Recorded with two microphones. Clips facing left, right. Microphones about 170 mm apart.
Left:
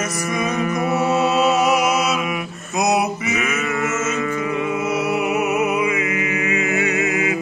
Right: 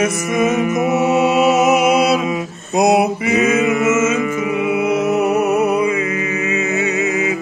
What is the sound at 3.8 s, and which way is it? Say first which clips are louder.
Music: right 8 dB; 90° right.